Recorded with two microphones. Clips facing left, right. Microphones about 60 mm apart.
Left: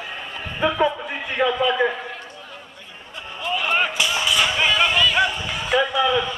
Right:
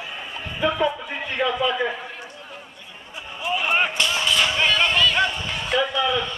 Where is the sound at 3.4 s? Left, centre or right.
Centre.